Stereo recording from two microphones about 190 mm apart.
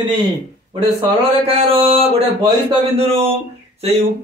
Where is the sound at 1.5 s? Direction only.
30° right (ahead or behind).